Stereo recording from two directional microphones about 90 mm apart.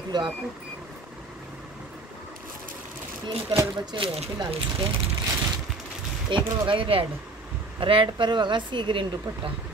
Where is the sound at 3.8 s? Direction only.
70° right (ahead or behind).